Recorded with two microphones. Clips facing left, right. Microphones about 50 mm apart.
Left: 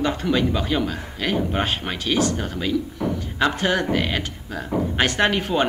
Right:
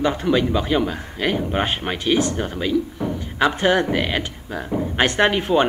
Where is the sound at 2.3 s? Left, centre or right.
Centre.